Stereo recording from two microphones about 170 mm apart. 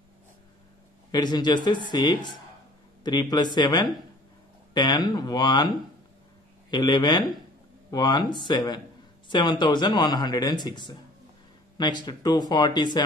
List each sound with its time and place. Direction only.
1.1 s speech: 25° left (ahead or behind)
6.7 s speech: 25° left (ahead or behind)